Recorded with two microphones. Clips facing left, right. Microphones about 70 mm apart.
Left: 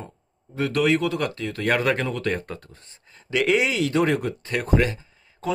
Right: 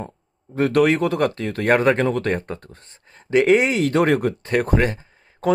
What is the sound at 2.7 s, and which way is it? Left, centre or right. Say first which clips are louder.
Speech: right 4 dB; right.